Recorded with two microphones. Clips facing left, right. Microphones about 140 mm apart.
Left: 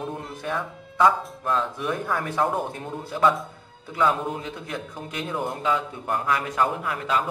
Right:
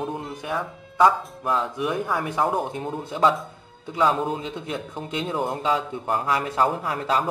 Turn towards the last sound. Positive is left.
turn(degrees=-35)  # may be behind; listen again after turning